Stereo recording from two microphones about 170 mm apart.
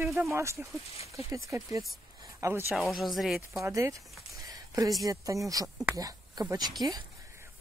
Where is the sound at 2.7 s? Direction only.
Centre (ahead or behind).